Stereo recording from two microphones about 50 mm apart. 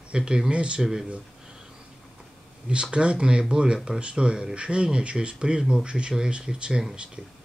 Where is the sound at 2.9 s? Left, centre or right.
Right.